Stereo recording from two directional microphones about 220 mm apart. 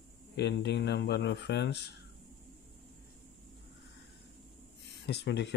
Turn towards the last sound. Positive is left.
turn(degrees=50)  # may be behind; listen again after turning